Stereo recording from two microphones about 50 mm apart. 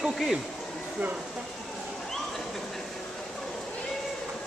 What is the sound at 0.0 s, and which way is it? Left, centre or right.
Speech, centre.